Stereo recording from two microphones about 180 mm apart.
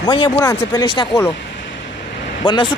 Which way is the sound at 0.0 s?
25° left (ahead or behind).